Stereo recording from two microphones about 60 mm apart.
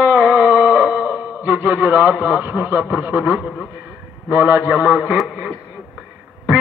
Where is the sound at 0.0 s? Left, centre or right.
Right.